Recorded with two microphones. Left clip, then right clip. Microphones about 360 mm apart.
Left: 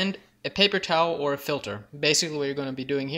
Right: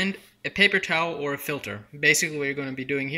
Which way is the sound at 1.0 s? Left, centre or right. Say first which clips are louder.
Left 3 dB; centre.